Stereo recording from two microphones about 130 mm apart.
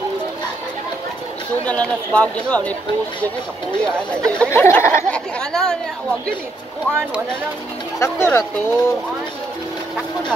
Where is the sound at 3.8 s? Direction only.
5° left (ahead or behind).